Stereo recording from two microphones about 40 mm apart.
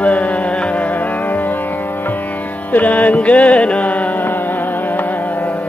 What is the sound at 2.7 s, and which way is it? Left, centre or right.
Music, left.